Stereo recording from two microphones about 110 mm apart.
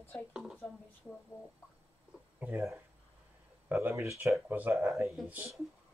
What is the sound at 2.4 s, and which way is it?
Speech, 20° right (ahead or behind).